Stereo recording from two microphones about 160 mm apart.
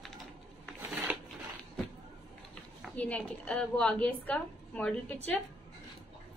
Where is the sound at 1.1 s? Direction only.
10° right (ahead or behind).